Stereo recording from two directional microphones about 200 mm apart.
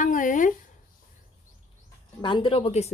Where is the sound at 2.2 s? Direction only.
25° left (ahead or behind).